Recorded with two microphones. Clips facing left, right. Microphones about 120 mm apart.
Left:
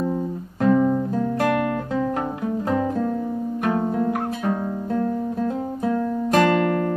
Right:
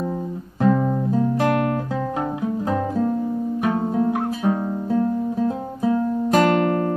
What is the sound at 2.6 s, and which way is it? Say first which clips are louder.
Music: even; 5° right (ahead or behind).